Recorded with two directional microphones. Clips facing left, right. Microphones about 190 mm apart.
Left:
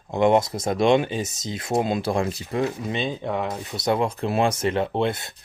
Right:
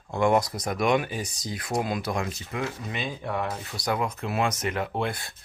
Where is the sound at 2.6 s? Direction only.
20° left (ahead or behind).